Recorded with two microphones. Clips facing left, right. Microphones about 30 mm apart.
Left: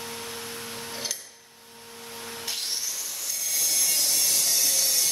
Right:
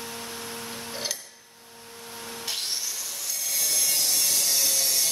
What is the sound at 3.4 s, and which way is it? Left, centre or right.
Sawing, centre.